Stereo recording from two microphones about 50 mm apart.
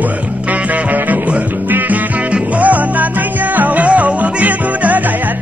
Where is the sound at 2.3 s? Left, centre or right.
Right.